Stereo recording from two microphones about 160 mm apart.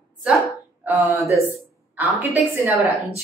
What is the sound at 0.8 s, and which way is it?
Speech, 15° right (ahead or behind).